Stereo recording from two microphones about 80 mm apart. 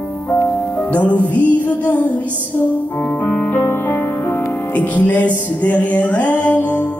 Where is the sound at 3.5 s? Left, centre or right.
Left.